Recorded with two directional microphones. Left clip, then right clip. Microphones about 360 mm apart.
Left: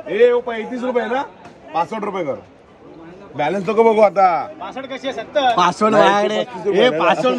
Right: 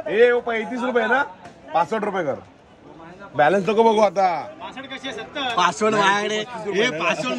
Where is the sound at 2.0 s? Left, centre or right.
Right.